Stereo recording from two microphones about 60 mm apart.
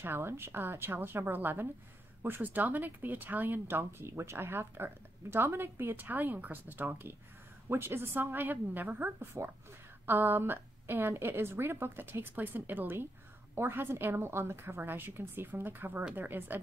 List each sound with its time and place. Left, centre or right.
0.0 s a woman's voice: right